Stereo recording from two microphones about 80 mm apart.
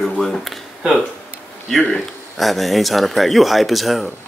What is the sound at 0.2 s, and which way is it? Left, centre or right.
Speech, centre.